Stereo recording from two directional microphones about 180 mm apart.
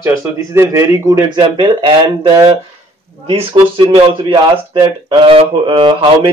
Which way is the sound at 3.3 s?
30° right (ahead or behind).